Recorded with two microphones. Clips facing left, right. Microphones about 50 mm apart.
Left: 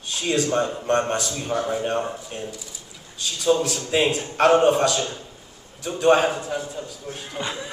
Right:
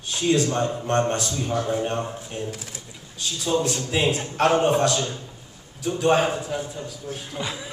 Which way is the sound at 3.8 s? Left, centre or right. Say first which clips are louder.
Left 2 dB; left.